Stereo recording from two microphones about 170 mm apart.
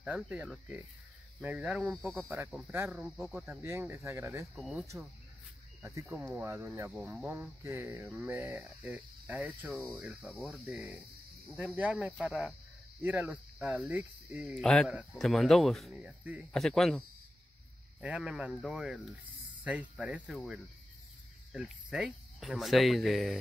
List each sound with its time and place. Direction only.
0.0 s speech: 10° right (ahead or behind)
2.2 s speech: 15° right (ahead or behind)
3.6 s speech: 15° right (ahead or behind)
4.6 s speech: centre (ahead or behind)
5.8 s speech: 15° right (ahead or behind); by 17.0 s centre (ahead or behind)
18.0 s speech: 5° right (ahead or behind)